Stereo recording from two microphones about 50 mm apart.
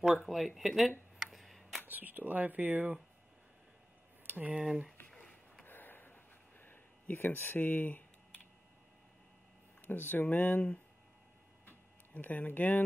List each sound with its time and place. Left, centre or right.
0.0 s speech: centre
1.2 s tick-tock: centre
1.9 s speech: right
4.3 s speech: right
5.7 s a sound: left
9.8 s speech: left
11.6 s tick-tock: left